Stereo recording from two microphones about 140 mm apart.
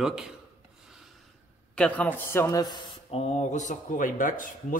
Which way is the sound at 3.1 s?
50° left (ahead or behind).